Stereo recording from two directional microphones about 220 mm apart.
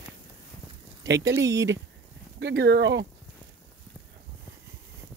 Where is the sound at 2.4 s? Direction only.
50° right (ahead or behind).